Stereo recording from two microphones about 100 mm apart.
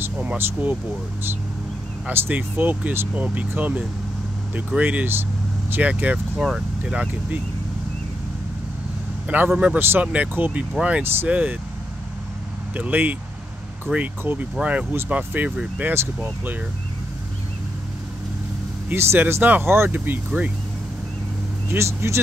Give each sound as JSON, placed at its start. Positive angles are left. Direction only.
{"t": 0.0, "sound": "speech", "side_deg": -15}
{"t": 2.0, "sound": "speech", "side_deg": -20}
{"t": 9.5, "sound": "speech", "side_deg": -10}
{"t": 9.8, "sound": "speech", "side_deg": -20}
{"t": 12.7, "sound": "speech", "side_deg": -15}
{"t": 18.9, "sound": "speech", "side_deg": -20}
{"t": 21.6, "sound": "speech", "side_deg": -25}